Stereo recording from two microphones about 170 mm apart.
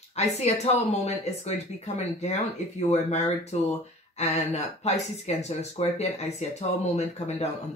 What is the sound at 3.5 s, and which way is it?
Speech, 40° left (ahead or behind).